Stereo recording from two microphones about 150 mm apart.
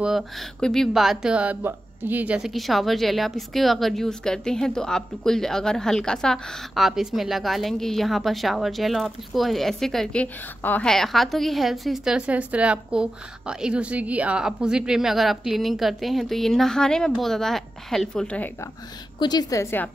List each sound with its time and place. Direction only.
0.0 s speech: centre (ahead or behind)
19.1 s a woman's voice: 25° left (ahead or behind)